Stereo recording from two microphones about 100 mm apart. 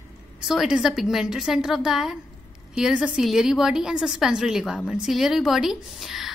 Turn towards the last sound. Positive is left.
turn(degrees=-5)  # may be behind; listen again after turning